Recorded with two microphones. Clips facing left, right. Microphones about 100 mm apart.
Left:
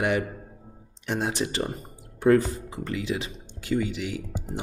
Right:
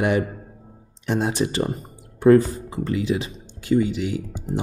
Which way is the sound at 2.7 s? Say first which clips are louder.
Right 7 dB; 30° right (ahead or behind).